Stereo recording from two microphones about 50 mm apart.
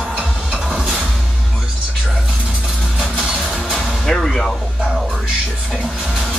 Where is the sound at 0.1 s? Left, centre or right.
Centre.